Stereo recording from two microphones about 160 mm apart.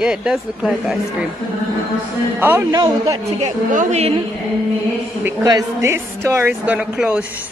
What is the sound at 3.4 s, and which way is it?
Speech, 50° right (ahead or behind).